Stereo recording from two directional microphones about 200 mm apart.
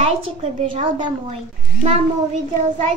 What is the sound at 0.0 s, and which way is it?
A woman's voice, 30° right (ahead or behind).